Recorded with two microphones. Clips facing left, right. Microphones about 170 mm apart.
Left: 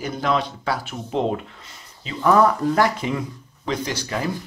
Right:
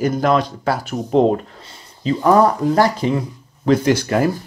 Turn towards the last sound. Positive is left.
turn(degrees=-50)  # may be behind; listen again after turning